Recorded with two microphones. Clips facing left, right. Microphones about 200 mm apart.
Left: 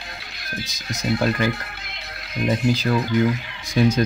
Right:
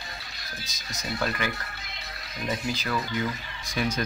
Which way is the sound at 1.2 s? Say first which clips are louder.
Left 6 dB; 30° left (ahead or behind).